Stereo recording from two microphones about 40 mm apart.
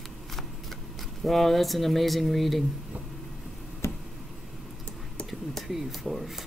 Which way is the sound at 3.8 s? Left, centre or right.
Left.